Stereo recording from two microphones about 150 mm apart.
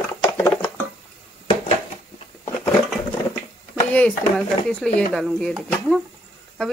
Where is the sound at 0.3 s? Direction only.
15° left (ahead or behind).